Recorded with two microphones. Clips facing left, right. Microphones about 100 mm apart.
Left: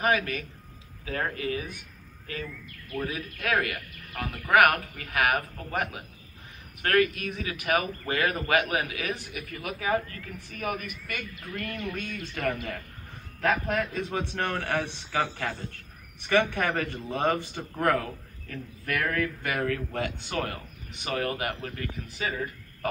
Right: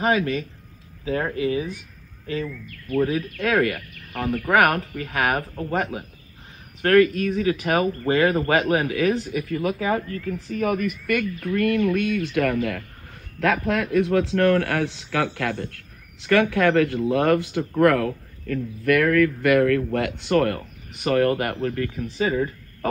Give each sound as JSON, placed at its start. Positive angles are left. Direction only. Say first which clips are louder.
{"t": 0.0, "sound": "speech", "louder": "right 5 dB", "side_deg": -30}
{"t": 3.0, "sound": "speech", "louder": "right 10 dB", "side_deg": -30}
{"t": 11.1, "sound": "speech", "louder": "right 16 dB", "side_deg": -75}
{"t": 13.4, "sound": "speech", "louder": "right 5 dB", "side_deg": -75}
{"t": 22.0, "sound": "speech", "louder": "right 10 dB", "side_deg": -30}